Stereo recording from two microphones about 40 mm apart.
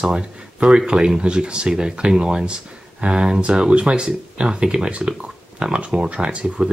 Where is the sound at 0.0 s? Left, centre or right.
Right.